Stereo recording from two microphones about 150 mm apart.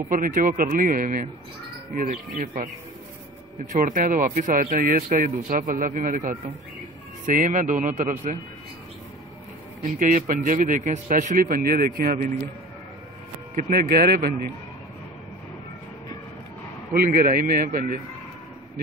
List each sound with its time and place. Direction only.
0.1 s speech: 65° right (ahead or behind)
3.7 s speech: 65° right (ahead or behind)
9.9 s speech: 60° right (ahead or behind)
13.6 s speech: 85° right
16.9 s speech: 80° right